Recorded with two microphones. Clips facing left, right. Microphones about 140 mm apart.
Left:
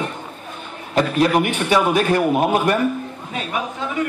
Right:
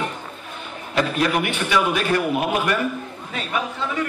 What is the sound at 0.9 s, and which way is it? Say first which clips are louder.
A man's voice: left 4 dB; 40° left (ahead or behind).